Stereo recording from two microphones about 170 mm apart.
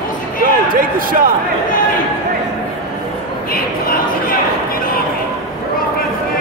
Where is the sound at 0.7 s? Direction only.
55° right (ahead or behind).